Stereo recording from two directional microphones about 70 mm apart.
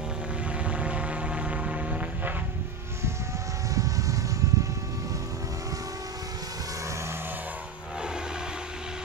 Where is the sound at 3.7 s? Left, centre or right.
Right.